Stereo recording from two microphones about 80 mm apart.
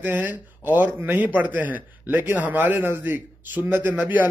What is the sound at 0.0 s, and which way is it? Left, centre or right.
A man's voice, right.